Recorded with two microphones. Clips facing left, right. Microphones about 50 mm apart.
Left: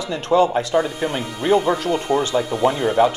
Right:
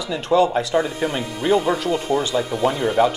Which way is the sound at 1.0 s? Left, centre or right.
Centre.